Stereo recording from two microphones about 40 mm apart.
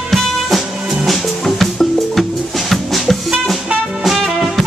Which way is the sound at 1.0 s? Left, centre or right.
Centre.